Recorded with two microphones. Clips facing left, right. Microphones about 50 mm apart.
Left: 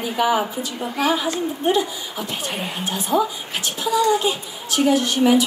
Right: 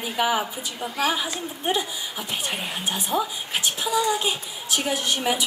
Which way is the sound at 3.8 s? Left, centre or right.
Centre.